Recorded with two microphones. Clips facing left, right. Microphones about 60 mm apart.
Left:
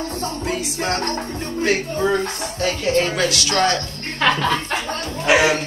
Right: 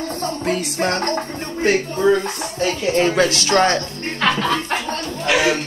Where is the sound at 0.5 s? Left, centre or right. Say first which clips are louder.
Right 4 dB; right.